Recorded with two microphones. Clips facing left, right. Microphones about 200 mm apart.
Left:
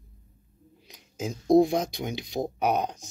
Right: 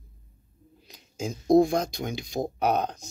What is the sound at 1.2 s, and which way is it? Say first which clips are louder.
Speech: even; 5° left (ahead or behind).